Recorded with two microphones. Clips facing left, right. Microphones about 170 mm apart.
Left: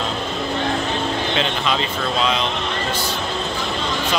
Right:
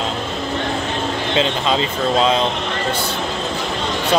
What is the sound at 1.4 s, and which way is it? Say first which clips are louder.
Speech: right 3 dB; 30° right (ahead or behind).